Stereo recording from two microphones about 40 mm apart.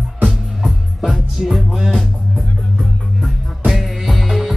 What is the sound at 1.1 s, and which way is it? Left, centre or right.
Music, centre.